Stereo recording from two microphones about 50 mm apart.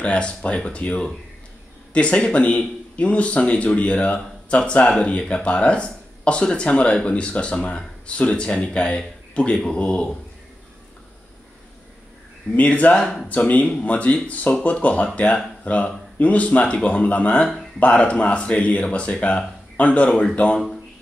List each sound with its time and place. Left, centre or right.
0.0 s speech: left
12.5 s speech: left
13.0 s speech: centre
13.3 s speech: left